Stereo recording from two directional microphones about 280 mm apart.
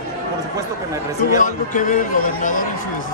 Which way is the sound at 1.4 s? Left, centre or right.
Left.